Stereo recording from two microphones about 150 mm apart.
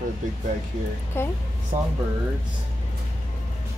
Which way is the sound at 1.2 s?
15° left (ahead or behind).